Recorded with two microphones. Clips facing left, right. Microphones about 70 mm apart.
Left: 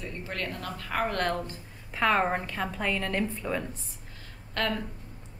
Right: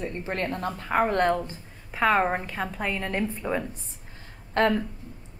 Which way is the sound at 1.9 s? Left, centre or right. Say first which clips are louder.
Right 3 dB; centre.